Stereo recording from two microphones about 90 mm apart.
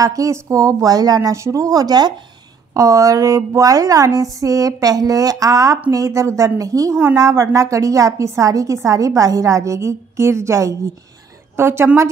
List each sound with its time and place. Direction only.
0.0 s a woman's voice: 40° right (ahead or behind)